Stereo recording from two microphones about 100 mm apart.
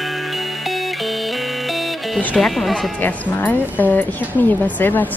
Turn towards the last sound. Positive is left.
turn(degrees=20)  # may be behind; listen again after turning